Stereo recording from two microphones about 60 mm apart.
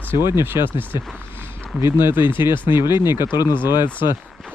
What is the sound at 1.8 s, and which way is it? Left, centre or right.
Speech, right.